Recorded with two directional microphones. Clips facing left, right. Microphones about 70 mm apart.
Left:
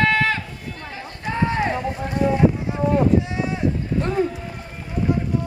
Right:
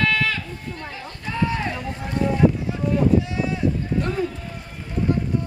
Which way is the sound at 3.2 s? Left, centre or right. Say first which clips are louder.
Even; left.